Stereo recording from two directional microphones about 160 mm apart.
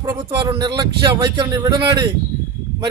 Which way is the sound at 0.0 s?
20° right (ahead or behind).